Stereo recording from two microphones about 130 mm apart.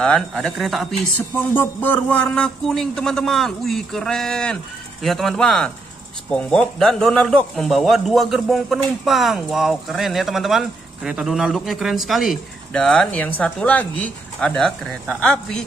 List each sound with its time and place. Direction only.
0.0 s a man's voice: 5° left (ahead or behind)
1.1 s a man's voice: 15° left (ahead or behind)